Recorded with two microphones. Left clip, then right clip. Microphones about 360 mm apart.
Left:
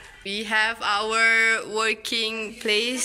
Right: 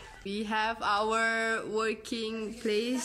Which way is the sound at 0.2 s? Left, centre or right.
Centre.